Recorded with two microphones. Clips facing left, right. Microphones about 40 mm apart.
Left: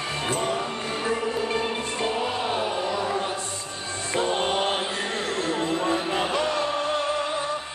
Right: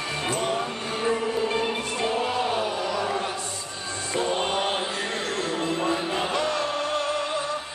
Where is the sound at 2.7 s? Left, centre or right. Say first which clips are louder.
Left 1 dB; left.